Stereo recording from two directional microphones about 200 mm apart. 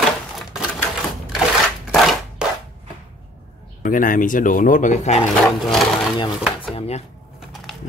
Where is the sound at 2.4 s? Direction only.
5° right (ahead or behind).